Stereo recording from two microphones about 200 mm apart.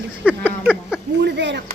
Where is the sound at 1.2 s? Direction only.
60° right (ahead or behind).